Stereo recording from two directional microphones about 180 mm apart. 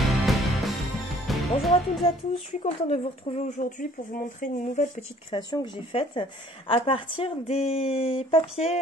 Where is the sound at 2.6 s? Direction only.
40° left (ahead or behind).